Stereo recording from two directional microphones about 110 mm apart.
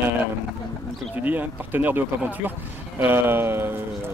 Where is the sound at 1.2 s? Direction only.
15° right (ahead or behind).